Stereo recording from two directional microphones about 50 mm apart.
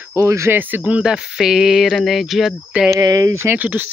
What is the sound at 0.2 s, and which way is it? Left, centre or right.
Speech, right.